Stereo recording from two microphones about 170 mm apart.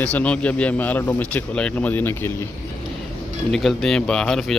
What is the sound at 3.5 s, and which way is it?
Speech, centre (ahead or behind).